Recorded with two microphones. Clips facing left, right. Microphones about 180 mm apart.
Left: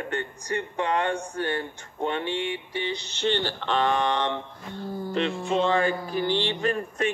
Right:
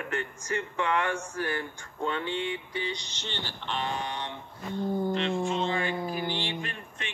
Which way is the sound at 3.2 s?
75° left (ahead or behind).